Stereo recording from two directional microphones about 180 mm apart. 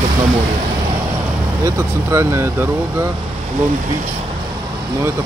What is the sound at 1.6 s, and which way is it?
Speech, 15° right (ahead or behind).